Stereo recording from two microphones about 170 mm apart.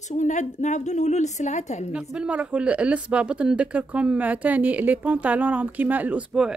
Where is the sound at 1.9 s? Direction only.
5° right (ahead or behind).